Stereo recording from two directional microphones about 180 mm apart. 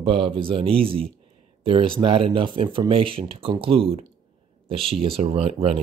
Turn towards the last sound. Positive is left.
turn(degrees=-30)  # may be behind; listen again after turning